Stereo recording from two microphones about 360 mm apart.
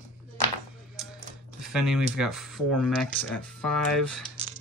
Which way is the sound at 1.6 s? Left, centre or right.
Centre.